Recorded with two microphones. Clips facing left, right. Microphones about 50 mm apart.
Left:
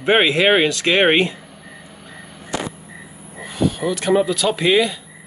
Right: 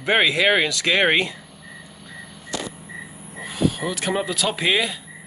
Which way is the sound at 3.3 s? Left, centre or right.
Centre.